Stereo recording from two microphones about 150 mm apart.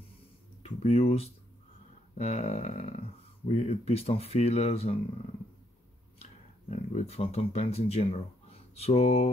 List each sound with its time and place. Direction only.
0.6 s speech: 45° left (ahead or behind)
6.7 s speech: 50° left (ahead or behind)